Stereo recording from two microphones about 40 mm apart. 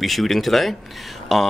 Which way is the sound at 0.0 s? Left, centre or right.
Centre.